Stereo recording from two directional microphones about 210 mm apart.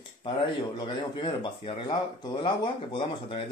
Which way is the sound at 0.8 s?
20° left (ahead or behind).